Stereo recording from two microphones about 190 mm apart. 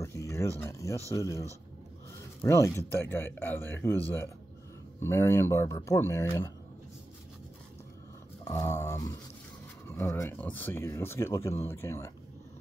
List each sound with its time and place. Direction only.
0.0 s a sound: 15° left (ahead or behind)
0.6 s speech: 15° left (ahead or behind)
2.4 s speech: 15° left (ahead or behind)
5.0 s speech: 15° left (ahead or behind)
8.5 s speech: 15° left (ahead or behind)